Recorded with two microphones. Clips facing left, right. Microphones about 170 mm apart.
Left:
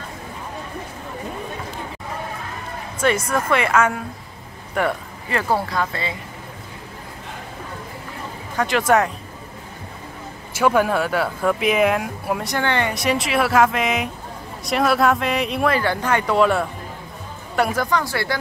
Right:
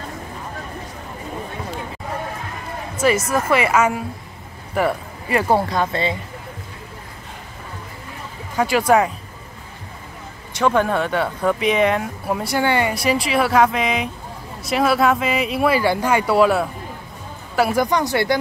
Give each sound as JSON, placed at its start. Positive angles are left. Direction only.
{"t": 3.3, "sound": "speech", "side_deg": -5}
{"t": 5.3, "sound": "speech", "side_deg": -20}
{"t": 8.5, "sound": "speech", "side_deg": -5}
{"t": 10.5, "sound": "speech", "side_deg": 5}
{"t": 17.8, "sound": "speech", "side_deg": -20}